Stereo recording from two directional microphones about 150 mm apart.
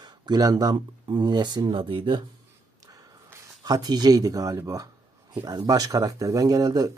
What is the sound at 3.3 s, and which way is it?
Speech, 25° right (ahead or behind).